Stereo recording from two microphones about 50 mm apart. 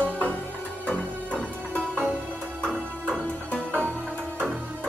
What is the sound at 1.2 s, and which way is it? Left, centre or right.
Music, right.